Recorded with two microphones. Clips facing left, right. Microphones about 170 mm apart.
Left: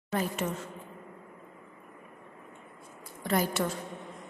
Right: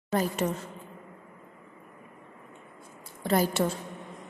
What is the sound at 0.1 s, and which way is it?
Speech, 35° right (ahead or behind).